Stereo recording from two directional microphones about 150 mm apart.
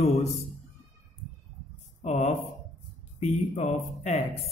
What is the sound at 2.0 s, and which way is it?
A man's voice, 45° left (ahead or behind).